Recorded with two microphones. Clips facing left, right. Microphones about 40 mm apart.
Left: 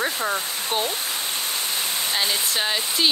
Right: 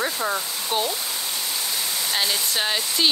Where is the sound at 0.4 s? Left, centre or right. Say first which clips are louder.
Left 1 dB; left.